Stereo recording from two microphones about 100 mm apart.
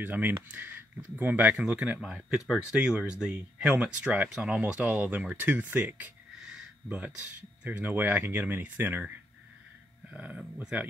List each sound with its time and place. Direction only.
0.0 s speech: 15° right (ahead or behind)
10.1 s speech: 10° right (ahead or behind)